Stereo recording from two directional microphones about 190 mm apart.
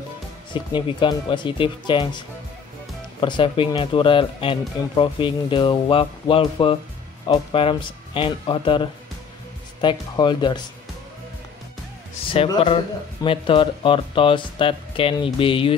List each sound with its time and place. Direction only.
0.5 s speech: 25° left (ahead or behind)
12.3 s speech: 25° left (ahead or behind)